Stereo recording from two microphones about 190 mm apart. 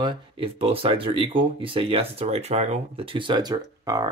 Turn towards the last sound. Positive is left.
turn(degrees=-20)  # may be behind; listen again after turning